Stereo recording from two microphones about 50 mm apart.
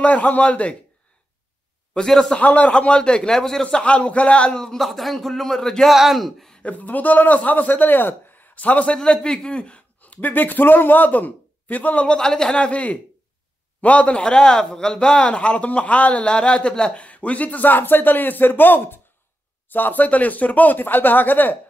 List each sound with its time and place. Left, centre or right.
0.0 s a man's voice: left
2.0 s a man's voice: centre
2.3 s a man's voice: left; by 3.6 s centre
3.7 s a man's voice: left
4.8 s speech: centre
6.6 s a man's voice: left
8.9 s a man's voice: centre
9.9 s speech: left
12.2 s a man's voice: centre; by 21.5 s left